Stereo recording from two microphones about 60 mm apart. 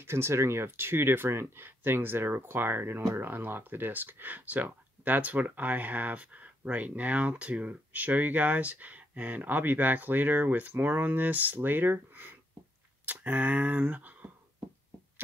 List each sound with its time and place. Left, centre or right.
0.0 s speech: right